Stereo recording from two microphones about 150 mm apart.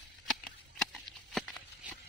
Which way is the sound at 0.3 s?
Centre (ahead or behind).